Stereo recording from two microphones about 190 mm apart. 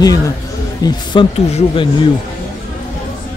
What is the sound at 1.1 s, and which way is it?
Speech, 25° left (ahead or behind).